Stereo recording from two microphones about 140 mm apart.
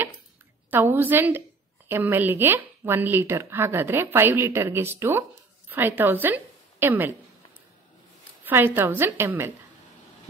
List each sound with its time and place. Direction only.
0.7 s a woman's voice: 15° right (ahead or behind)
8.5 s speech: 15° right (ahead or behind)